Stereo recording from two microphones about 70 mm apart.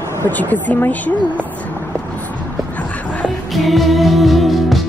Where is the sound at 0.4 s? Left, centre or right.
Left.